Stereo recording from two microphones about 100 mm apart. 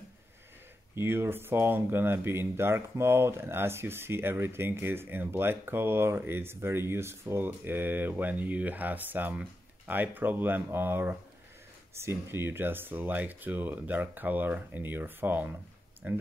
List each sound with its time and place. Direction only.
0.9 s speech: 25° right (ahead or behind)